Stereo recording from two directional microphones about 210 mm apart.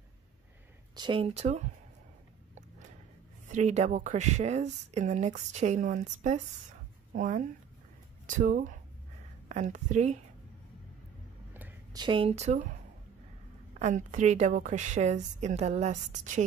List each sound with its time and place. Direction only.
0.9 s speech: 25° right (ahead or behind)
3.5 s speech: 35° right (ahead or behind)
11.5 s a sound: 10° right (ahead or behind)
12.0 s speech: 25° right (ahead or behind)
13.7 s speech: 35° right (ahead or behind)